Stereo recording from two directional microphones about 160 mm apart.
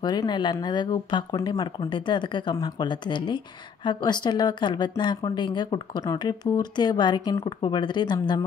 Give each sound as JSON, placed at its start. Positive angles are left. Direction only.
{"t": 0.0, "sound": "speech", "side_deg": 25}